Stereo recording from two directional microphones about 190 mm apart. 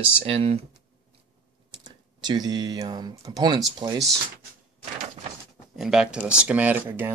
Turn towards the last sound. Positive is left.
turn(degrees=-10)  # may be behind; listen again after turning